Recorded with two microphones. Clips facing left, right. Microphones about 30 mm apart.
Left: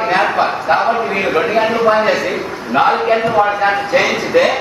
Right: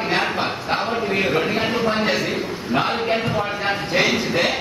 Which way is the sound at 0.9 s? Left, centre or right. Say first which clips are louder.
Left 5 dB; centre.